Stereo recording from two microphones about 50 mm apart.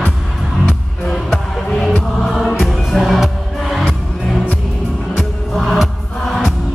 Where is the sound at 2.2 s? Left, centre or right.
Centre.